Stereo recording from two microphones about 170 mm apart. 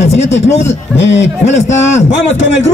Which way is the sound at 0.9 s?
90° left.